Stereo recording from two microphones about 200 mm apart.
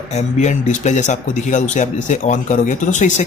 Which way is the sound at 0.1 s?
35° left (ahead or behind).